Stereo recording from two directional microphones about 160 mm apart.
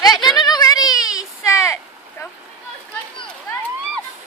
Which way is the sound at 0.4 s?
25° left (ahead or behind).